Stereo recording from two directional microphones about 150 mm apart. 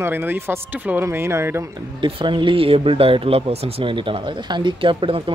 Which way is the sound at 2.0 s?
30° right (ahead or behind).